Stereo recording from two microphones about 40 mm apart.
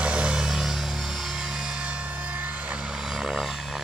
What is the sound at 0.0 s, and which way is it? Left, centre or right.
Music, right.